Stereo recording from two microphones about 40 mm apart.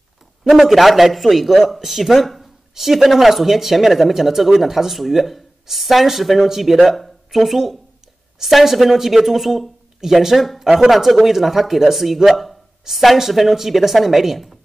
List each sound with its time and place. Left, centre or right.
0.4 s speech: centre
2.2 s a sound: centre
2.7 s speech: centre